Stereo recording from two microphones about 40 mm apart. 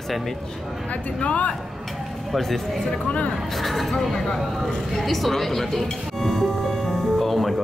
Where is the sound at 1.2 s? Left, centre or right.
Left.